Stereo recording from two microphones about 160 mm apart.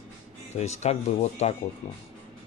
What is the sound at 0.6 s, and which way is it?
Speech, 45° left (ahead or behind).